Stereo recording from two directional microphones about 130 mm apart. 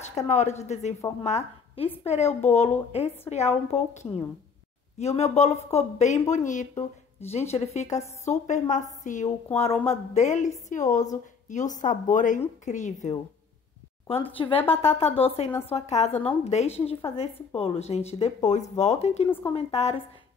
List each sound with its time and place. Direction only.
0.3 s a woman's voice: 60° left (ahead or behind)
6.3 s a woman's voice: 70° left (ahead or behind)
7.2 s a woman's voice: 55° left (ahead or behind); by 9.3 s 75° left (ahead or behind)
9.6 s a woman's voice: 50° left (ahead or behind); by 13.1 s 70° left (ahead or behind)
14.2 s a woman's voice: 45° left (ahead or behind)